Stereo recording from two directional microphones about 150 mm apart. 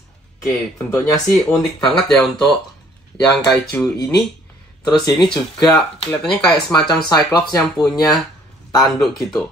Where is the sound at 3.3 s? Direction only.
5° left (ahead or behind).